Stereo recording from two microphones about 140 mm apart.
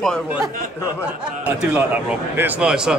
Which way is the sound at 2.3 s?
15° right (ahead or behind).